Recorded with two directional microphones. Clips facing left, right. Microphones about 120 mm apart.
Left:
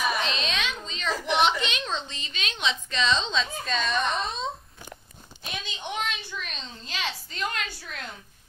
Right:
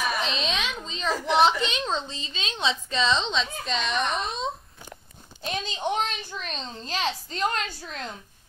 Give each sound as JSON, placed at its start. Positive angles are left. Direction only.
{"t": 0.2, "sound": "a sound", "side_deg": -30}
{"t": 2.0, "sound": "a woman's voice", "side_deg": -30}
{"t": 4.1, "sound": "speech", "side_deg": 0}
{"t": 5.4, "sound": "a woman's voice", "side_deg": -35}